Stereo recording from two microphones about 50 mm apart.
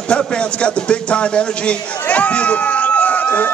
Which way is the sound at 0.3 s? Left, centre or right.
Left.